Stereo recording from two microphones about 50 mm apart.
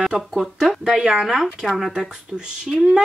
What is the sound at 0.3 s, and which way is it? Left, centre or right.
Speech, centre.